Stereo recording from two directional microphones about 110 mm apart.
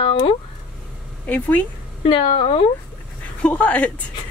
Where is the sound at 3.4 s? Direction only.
15° left (ahead or behind).